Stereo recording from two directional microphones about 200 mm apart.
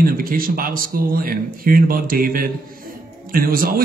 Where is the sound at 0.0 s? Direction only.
45° right (ahead or behind).